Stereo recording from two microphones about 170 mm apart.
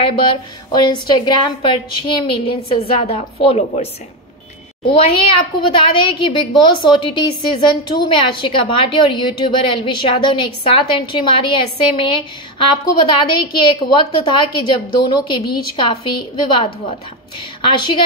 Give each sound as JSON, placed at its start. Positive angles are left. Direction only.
{"t": 0.0, "sound": "a child's voice", "side_deg": 25}